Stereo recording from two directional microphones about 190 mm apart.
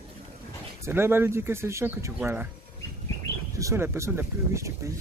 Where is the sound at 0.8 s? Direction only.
10° right (ahead or behind).